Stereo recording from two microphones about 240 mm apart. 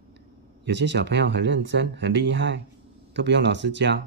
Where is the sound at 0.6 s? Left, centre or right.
Right.